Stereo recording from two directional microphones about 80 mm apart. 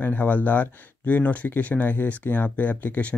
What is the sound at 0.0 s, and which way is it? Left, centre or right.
Speech, left.